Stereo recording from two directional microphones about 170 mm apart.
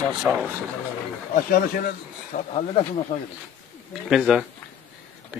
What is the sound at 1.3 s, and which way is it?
Speech, 55° left (ahead or behind).